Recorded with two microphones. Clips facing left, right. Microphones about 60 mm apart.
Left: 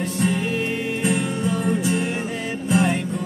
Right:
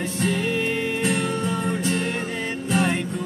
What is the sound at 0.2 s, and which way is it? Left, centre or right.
Music, centre.